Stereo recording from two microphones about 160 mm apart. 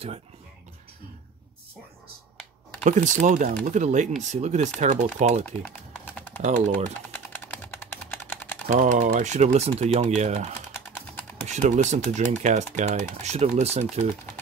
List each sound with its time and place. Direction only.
2.8 s speech: 50° right (ahead or behind)
5.4 s typing: 10° left (ahead or behind)
6.4 s speech: 50° right (ahead or behind)
7.1 s a sound: 15° left (ahead or behind)
8.6 s speech: 50° right (ahead or behind)